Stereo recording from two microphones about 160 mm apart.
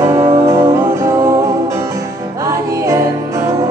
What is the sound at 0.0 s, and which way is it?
Music, 15° right (ahead or behind).